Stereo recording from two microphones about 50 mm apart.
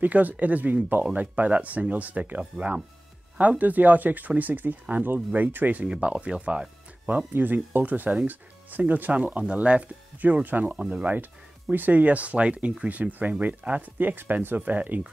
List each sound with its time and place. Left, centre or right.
0.0 s speech: right
5.9 s speech: right
7.1 s speech: right
10.7 s speech: right
11.7 s speech: right
13.9 s speech: right